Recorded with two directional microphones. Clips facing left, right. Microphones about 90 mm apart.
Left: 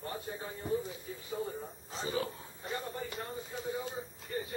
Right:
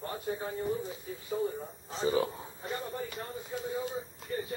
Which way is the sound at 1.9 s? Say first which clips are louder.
Right 8 dB; 35° right (ahead or behind).